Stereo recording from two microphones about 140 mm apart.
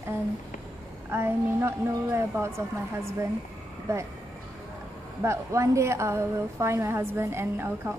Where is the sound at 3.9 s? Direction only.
20° right (ahead or behind).